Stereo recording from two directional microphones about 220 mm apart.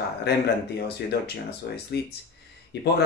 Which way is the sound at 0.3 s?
50° left (ahead or behind).